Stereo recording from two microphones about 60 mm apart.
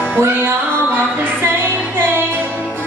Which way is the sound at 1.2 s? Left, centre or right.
Right.